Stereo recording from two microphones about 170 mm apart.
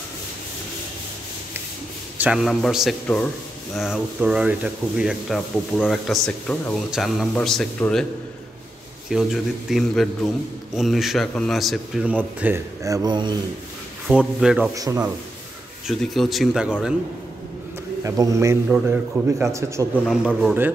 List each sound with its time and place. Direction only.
2.1 s speech: 5° right (ahead or behind)
6.9 s speech: 5° right (ahead or behind)
9.1 s speech: centre (ahead or behind); by 13.4 s 25° right (ahead or behind)
14.0 s speech: centre (ahead or behind)
14.7 s a man's voice: 20° right (ahead or behind)
15.9 s speech: centre (ahead or behind)
18.0 s a man's voice: 20° right (ahead or behind)
20.1 s speech: centre (ahead or behind)